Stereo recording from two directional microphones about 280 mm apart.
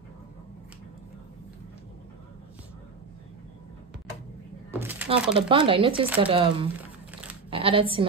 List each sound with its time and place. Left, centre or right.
4.7 s speech: centre
5.7 s speech: centre
7.1 s sheep: centre
7.5 s a woman's voice: centre